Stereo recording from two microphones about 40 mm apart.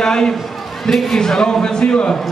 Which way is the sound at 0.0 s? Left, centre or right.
Centre.